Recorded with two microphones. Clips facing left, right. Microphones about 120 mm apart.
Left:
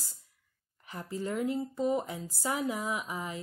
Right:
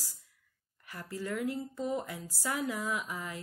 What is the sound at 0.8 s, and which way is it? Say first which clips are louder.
Speech: left 3 dB; 20° left (ahead or behind).